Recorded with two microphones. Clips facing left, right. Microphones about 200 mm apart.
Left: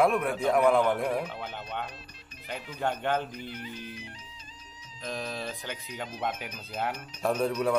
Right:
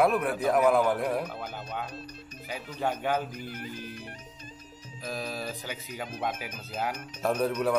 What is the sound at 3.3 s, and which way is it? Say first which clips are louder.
Speech: right 1 dB; 50° right (ahead or behind).